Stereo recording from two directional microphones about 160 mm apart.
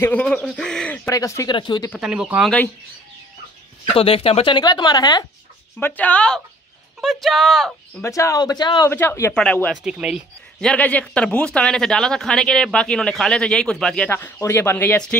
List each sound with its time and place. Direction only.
0.0 s speech: 10° left (ahead or behind)
1.0 s speech: 20° left (ahead or behind)
2.0 s speech: 5° right (ahead or behind)
3.9 s speech: 35° left (ahead or behind)
5.8 s speech: 10° left (ahead or behind)
8.0 s speech: 20° left (ahead or behind)
8.9 s speech: 15° left (ahead or behind)
9.8 s speech: 5° right (ahead or behind)